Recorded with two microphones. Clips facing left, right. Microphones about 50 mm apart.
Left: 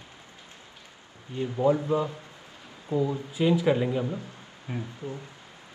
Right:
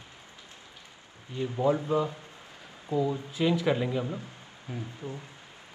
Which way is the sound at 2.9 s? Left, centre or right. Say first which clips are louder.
Left 2 dB; left.